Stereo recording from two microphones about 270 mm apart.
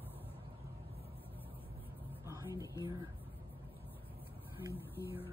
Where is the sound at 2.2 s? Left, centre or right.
Centre.